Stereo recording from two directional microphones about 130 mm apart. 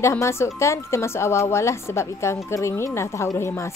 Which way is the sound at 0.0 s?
20° left (ahead or behind).